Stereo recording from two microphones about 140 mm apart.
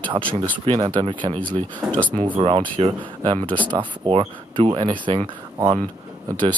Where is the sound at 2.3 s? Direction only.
40° right (ahead or behind).